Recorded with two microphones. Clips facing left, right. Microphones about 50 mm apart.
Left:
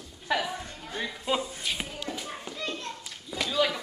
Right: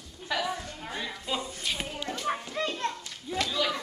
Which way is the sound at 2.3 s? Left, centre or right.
Right.